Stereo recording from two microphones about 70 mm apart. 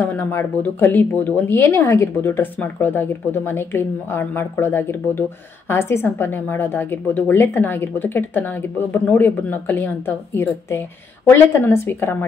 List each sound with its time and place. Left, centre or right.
0.0 s a woman's voice: left